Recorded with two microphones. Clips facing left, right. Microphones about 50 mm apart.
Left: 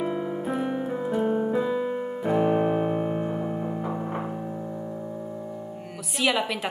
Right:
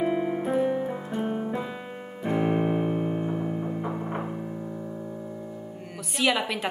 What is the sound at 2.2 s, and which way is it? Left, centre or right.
Keyboard, centre.